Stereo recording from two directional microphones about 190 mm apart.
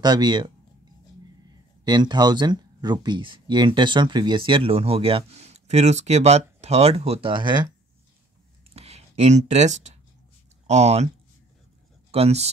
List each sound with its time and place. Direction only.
0.0 s speech: 20° right (ahead or behind)
1.9 s speech: 20° right (ahead or behind)
8.7 s a sound: 35° right (ahead or behind)
10.7 s speech: 35° right (ahead or behind)
12.1 s speech: 35° right (ahead or behind)